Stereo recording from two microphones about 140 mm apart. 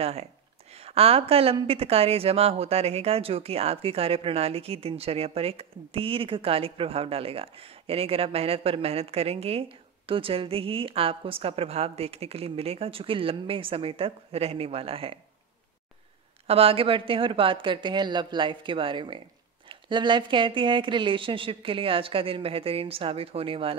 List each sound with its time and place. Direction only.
0.0 s speech: 50° right (ahead or behind)
16.4 s a woman's voice: 45° right (ahead or behind)